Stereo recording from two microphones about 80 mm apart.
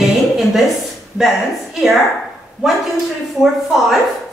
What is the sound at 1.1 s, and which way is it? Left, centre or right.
Speech, centre.